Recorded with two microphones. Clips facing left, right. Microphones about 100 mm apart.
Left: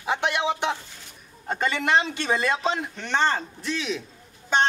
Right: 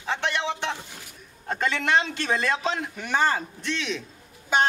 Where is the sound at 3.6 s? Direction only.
5° left (ahead or behind).